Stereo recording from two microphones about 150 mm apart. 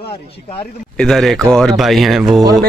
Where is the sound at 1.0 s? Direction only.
Centre (ahead or behind).